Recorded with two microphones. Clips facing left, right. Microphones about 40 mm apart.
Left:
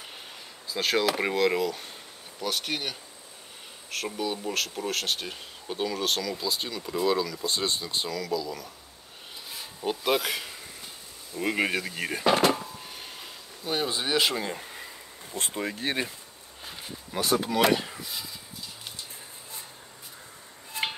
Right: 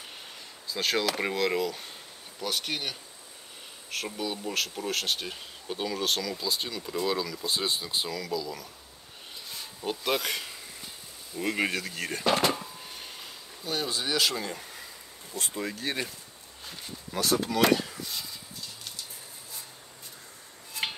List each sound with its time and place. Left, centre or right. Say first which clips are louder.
0.7 s speech: left 3 dB; centre
9.5 s a sound: left 3 dB; centre
11.3 s speech: left 2 dB; centre
13.7 s speech: left 2 dB; left
16.6 s speech: left 1 dB; centre
18.0 s a sound: even; centre
20.7 s music: left 2 dB; left